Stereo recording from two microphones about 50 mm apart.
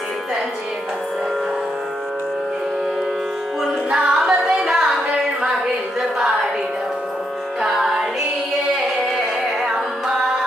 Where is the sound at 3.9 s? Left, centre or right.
Centre.